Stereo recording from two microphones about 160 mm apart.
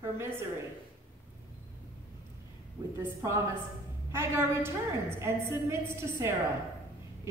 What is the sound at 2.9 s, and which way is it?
A woman's voice, 20° right (ahead or behind).